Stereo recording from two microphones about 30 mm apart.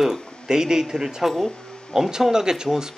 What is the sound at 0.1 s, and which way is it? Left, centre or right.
Speech, right.